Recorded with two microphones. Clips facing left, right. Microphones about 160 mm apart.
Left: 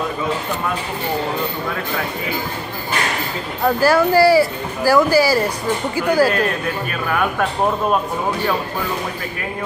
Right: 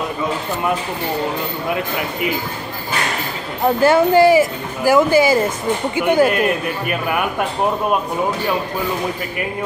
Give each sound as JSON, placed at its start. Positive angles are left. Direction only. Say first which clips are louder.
{"t": 3.6, "sound": "a man's voice", "louder": "right 2 dB", "side_deg": -20}